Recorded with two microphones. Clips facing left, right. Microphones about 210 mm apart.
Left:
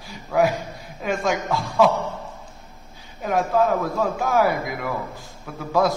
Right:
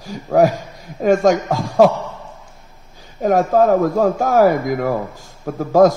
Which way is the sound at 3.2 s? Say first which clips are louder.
Right 6 dB; 45° right (ahead or behind).